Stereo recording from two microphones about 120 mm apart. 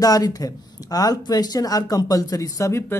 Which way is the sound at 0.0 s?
30° left (ahead or behind).